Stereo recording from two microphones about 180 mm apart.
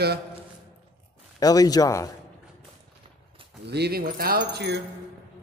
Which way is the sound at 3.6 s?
65° right (ahead or behind).